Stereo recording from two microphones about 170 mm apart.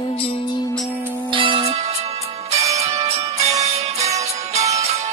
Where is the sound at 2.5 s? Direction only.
20° right (ahead or behind).